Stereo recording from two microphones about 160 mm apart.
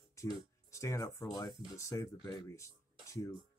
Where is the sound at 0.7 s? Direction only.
20° left (ahead or behind).